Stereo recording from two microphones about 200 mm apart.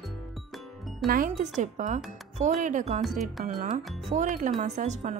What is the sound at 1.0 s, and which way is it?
Speech, 45° right (ahead or behind).